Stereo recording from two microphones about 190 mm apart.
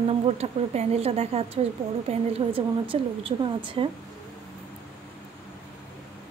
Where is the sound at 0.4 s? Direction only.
35° right (ahead or behind).